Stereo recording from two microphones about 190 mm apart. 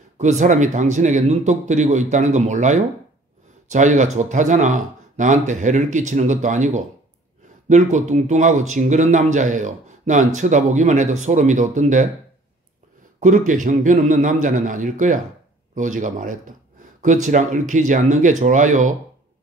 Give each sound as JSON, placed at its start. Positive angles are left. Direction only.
{"t": 0.2, "sound": "speech", "side_deg": -40}
{"t": 13.2, "sound": "a man's voice", "side_deg": -45}